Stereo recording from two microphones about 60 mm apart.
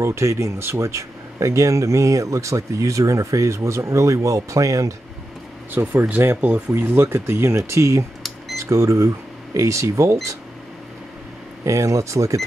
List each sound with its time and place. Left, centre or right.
0.0 s speech: right
5.7 s speech: right
11.6 s speech: right